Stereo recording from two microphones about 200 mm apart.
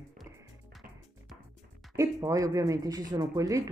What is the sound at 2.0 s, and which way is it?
Speech, 15° right (ahead or behind).